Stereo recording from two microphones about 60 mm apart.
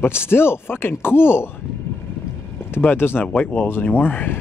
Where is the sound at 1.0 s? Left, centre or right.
Left.